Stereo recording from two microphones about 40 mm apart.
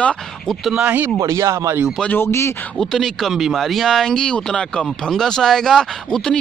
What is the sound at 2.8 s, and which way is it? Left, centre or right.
Speech, centre.